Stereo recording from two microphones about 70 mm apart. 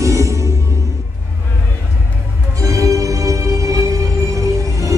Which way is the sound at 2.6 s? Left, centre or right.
Right.